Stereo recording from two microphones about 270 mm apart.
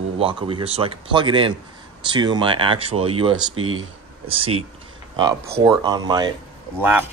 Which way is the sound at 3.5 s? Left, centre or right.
Right.